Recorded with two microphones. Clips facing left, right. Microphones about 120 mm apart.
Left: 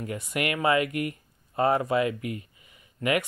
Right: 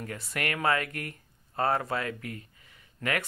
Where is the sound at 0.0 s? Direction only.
15° left (ahead or behind).